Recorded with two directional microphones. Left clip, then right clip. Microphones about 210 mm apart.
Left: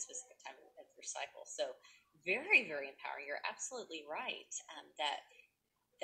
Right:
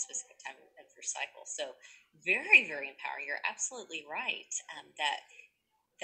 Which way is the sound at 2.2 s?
5° right (ahead or behind).